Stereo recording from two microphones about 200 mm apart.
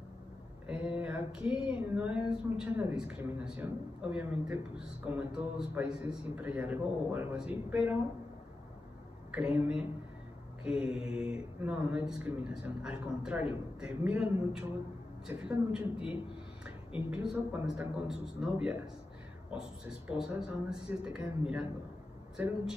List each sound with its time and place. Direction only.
0.7 s a woman's voice: 5° right (ahead or behind)
9.3 s speech: 5° right (ahead or behind)